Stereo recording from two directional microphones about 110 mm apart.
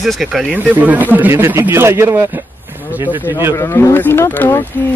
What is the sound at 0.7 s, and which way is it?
A man's voice, 15° right (ahead or behind).